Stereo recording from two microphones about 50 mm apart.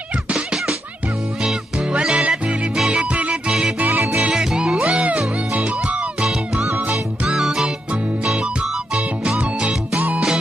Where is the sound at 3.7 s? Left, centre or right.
Right.